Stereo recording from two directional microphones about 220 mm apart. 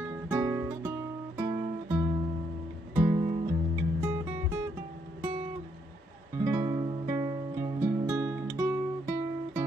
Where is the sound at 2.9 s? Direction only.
25° right (ahead or behind).